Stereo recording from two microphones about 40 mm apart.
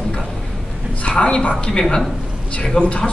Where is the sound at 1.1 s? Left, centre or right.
Centre.